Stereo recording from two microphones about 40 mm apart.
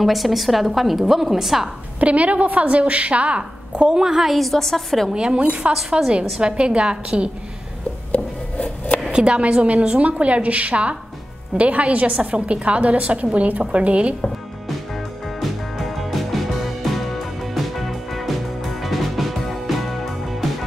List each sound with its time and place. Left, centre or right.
0.0 s a woman's voice: centre
2.0 s a woman's voice: right
4.0 s a woman's voice: centre
4.4 s a woman's voice: centre
5.1 s a woman's voice: right
5.5 s a woman's voice: centre
6.4 s a woman's voice: right
9.1 s a woman's voice: right
15.4 s music: centre